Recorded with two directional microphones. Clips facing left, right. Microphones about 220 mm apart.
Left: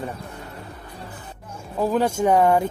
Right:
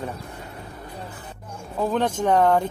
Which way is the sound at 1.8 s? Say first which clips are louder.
Left 2 dB; 5° left (ahead or behind).